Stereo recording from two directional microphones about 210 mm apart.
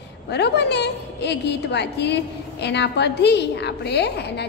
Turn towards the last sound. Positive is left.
turn(degrees=50)  # may be behind; listen again after turning